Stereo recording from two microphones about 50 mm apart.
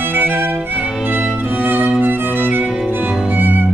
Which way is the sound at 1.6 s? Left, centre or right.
Right.